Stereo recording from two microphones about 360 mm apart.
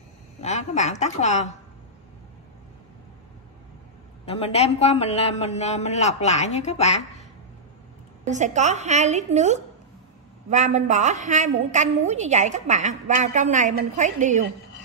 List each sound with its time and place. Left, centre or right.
0.4 s a woman's voice: centre
4.3 s a man's voice: centre
8.3 s a woman's voice: centre